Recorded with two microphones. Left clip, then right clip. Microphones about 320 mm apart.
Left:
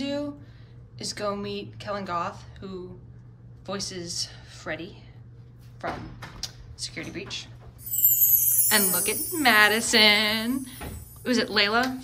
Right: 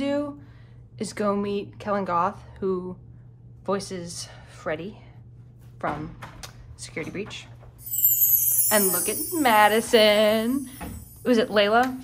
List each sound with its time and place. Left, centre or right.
0.0 s a sound: centre
0.9 s speech: centre
6.4 s speech: centre
7.9 s speech: centre